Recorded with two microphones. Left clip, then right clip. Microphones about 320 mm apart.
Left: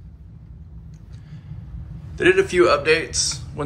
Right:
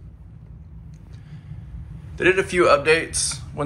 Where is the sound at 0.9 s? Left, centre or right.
Centre.